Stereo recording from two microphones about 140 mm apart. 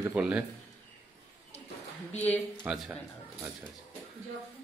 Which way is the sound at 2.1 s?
10° left (ahead or behind).